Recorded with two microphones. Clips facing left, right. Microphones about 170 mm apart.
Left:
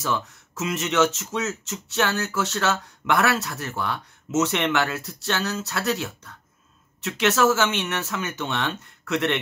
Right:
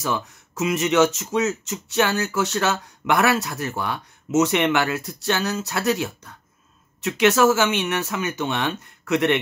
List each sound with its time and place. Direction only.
0.0 s speech: 10° right (ahead or behind)